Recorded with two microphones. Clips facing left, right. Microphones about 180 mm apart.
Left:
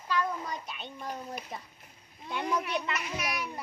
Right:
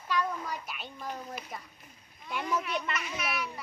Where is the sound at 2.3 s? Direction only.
20° left (ahead or behind).